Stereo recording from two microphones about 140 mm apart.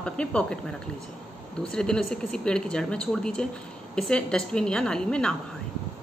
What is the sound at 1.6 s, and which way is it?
A woman's voice, 5° left (ahead or behind).